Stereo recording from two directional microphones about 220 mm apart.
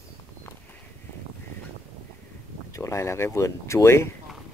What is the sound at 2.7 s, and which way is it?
Speech, 15° left (ahead or behind).